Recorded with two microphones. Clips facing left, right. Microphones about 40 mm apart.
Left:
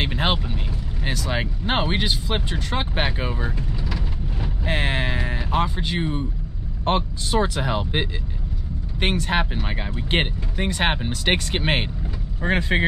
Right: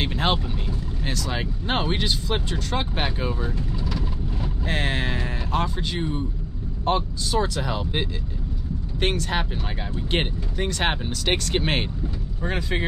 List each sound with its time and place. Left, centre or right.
0.0 s vehicle: centre
1.0 s speech: left
12.4 s speech: left